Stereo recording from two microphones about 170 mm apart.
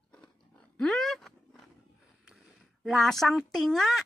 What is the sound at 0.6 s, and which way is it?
Roaring cats, 5° left (ahead or behind).